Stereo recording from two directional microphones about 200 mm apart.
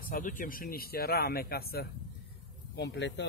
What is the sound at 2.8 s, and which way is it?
Speech, 60° left (ahead or behind).